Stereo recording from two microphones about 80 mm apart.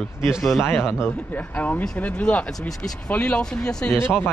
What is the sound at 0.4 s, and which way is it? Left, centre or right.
Speech, centre.